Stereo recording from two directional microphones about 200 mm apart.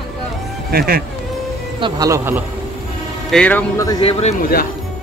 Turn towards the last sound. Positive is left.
turn(degrees=30)  # may be behind; listen again after turning